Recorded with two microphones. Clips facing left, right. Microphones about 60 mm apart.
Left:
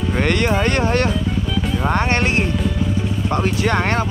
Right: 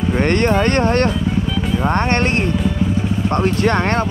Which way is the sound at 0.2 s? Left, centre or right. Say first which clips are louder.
Right 2 dB; right.